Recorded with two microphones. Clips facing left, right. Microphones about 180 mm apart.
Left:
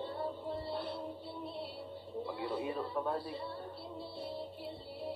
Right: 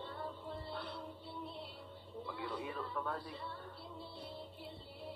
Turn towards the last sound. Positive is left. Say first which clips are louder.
# left 6 dB
turn(degrees=30)  # may be behind; listen again after turning